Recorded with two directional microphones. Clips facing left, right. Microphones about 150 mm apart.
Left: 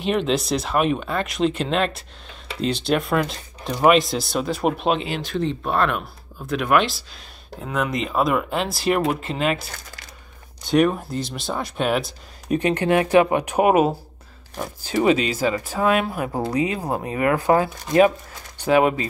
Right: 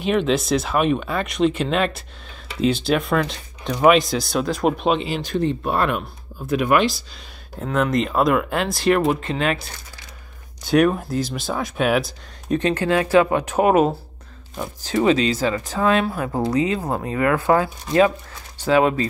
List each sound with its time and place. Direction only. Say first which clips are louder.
0.0 s speech: right 2 dB; centre (ahead or behind)
10.7 s speech: right 1 dB; centre (ahead or behind)
12.4 s speech: even; 15° left (ahead or behind)